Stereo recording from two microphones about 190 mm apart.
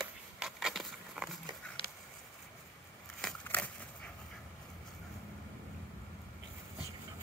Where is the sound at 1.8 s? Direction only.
30° left (ahead or behind).